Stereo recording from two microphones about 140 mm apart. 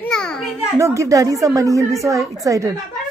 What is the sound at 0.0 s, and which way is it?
Children playing, 5° left (ahead or behind).